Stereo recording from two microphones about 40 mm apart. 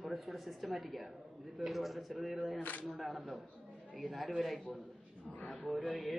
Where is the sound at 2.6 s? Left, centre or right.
Left.